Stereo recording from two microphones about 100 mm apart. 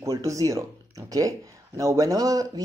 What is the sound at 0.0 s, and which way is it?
Speech, 35° right (ahead or behind).